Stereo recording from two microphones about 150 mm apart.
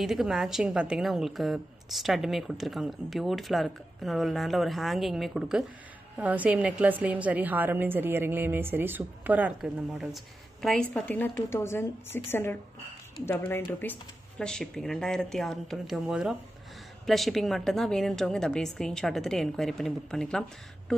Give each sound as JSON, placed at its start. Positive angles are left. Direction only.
{"t": 0.0, "sound": "a woman's voice", "side_deg": 0}